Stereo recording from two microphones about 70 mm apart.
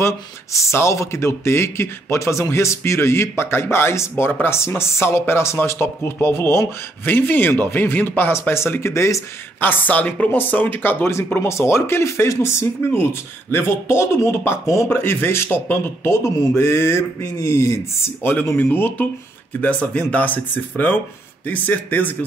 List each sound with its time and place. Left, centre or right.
0.0 s speech: left
4.3 s speech: left
4.6 s speech: left
9.6 s speech: left